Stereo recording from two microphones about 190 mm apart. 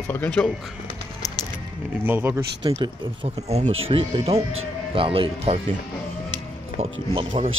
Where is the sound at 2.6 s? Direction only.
25° right (ahead or behind).